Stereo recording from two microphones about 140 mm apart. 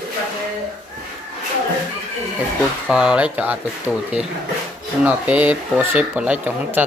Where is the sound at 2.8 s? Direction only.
5° right (ahead or behind).